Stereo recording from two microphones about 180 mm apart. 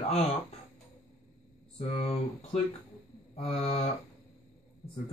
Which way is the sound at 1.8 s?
35° left (ahead or behind).